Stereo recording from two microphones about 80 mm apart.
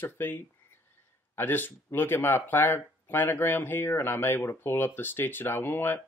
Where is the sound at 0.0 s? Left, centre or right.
Left.